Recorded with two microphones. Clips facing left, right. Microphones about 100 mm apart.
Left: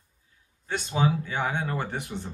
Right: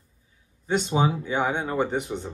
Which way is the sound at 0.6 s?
20° right (ahead or behind).